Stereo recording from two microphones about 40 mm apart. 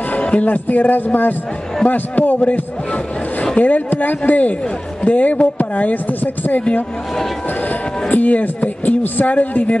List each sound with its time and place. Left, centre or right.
0.1 s a man's voice: left
8.1 s speech: left